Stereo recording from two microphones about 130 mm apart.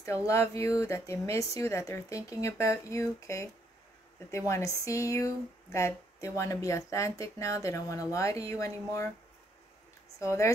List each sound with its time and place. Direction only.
0.0 s speech: 25° left (ahead or behind)
10.1 s speech: 20° left (ahead or behind)